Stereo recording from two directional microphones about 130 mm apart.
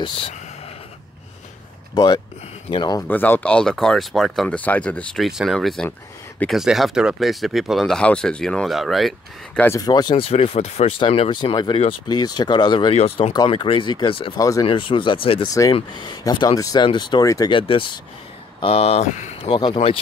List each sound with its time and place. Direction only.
0.0 s speech: 45° left (ahead or behind)
2.0 s speech: 35° left (ahead or behind)
3.1 s speech: 15° left (ahead or behind)
4.6 s speech: 10° left (ahead or behind)
9.8 s speech: 30° left (ahead or behind)
10.1 s speech: 50° left (ahead or behind)
12.9 s speech: 50° left (ahead or behind)
14.4 s speech: 25° left (ahead or behind)
14.7 s speech: 40° left (ahead or behind)
15.4 s speech: 25° left (ahead or behind)
15.7 s speech: 40° left (ahead or behind)
17.5 s speech: 40° left (ahead or behind); by 19.5 s 65° left (ahead or behind)
19.5 s speech: 35° left (ahead or behind)